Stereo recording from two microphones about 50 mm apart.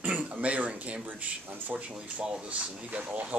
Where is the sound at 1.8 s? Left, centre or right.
Right.